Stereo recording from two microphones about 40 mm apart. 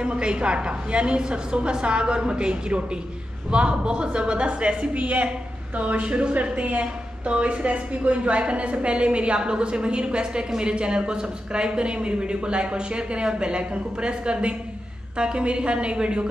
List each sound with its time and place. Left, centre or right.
0.2 s a woman's voice: right